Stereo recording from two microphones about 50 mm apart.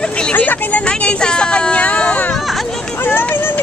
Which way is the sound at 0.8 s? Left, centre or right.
Left.